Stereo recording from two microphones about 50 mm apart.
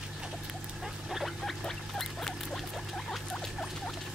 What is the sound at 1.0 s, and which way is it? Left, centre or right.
Rodents, centre.